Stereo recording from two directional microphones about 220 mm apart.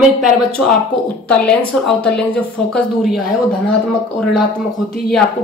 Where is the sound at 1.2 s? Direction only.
5° left (ahead or behind).